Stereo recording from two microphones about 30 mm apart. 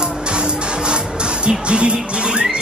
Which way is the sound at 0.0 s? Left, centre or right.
Right.